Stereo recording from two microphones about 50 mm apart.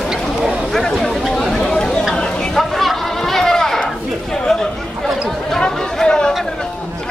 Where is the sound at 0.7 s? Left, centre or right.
Centre.